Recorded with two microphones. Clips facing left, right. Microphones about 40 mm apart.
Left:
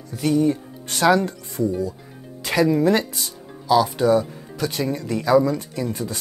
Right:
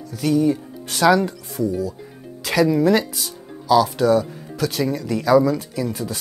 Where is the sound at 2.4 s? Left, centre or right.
Centre.